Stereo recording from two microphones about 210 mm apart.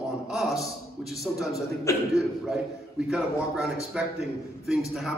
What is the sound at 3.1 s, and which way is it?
Speech, centre (ahead or behind).